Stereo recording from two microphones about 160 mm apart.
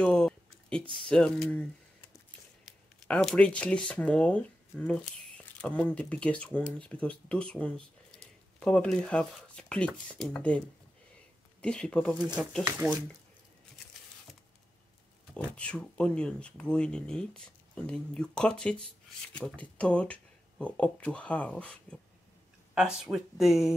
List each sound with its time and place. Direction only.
0.0 s a sound: 5° left (ahead or behind)
1.0 s speech: 5° left (ahead or behind)
2.6 s speech: 5° left (ahead or behind)
11.6 s speech: 5° left (ahead or behind)
12.4 s speech: 5° right (ahead or behind)
15.3 s speech: 5° left (ahead or behind)